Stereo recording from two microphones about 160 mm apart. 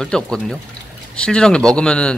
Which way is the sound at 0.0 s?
5° left (ahead or behind).